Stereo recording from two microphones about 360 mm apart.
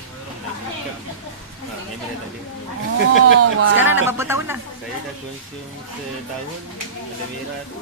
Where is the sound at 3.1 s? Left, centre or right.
Right.